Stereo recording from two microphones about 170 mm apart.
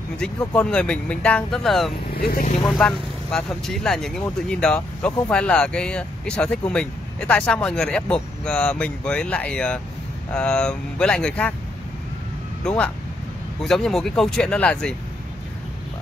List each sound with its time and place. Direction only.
0.5 s speech: 5° left (ahead or behind)
2.1 s speech: 60° left (ahead or behind)
2.6 s speech: 5° left (ahead or behind)
12.6 s speech: 5° left (ahead or behind)